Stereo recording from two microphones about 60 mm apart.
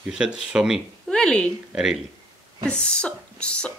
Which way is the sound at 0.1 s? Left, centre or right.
Centre.